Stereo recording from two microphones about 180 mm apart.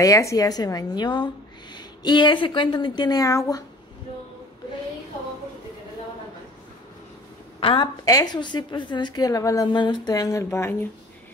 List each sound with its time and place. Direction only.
0.0 s a woman's voice: 15° left (ahead or behind)
7.6 s a woman's voice: 25° left (ahead or behind)